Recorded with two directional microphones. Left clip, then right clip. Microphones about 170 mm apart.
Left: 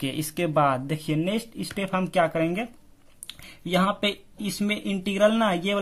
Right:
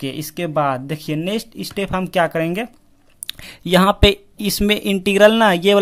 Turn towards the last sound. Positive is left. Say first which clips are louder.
# right 10 dB
turn(degrees=-35)  # may be behind; listen again after turning